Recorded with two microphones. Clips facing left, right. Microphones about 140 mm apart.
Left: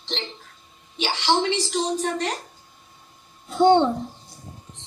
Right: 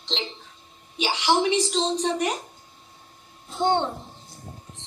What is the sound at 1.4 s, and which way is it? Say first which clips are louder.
Speech: right 1 dB; 20° right (ahead or behind).